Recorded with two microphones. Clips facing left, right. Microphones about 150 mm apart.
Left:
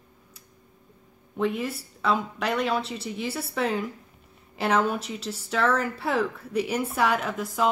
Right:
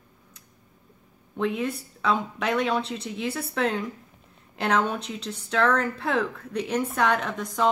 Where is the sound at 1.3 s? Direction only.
5° left (ahead or behind).